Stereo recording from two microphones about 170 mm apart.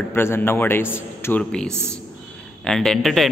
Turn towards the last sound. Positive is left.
turn(degrees=0)  # may be behind; listen again after turning